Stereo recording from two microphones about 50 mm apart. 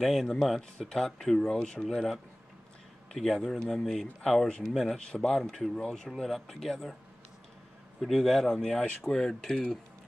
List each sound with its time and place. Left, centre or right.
0.0 s speech: centre
4.5 s speech: centre
8.0 s speech: centre